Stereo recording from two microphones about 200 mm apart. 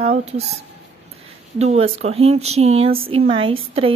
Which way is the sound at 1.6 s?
30° right (ahead or behind).